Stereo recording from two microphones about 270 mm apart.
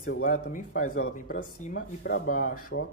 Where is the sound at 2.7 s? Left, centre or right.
Left.